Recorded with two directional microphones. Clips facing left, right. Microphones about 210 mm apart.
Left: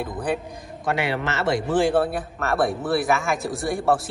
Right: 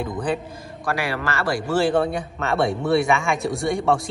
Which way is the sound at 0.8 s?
25° left (ahead or behind).